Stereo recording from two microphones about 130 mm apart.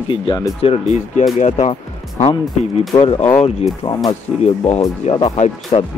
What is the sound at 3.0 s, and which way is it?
Speech, 45° left (ahead or behind).